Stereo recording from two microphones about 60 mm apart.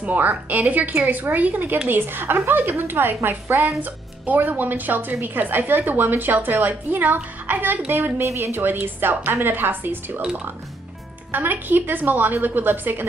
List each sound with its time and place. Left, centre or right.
0.0 s a woman's voice: right
7.9 s a woman's voice: right
11.3 s a woman's voice: right